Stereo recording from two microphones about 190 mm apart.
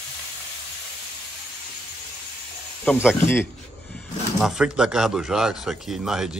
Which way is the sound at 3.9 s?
Centre (ahead or behind).